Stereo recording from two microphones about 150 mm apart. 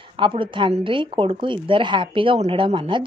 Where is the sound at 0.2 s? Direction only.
35° right (ahead or behind).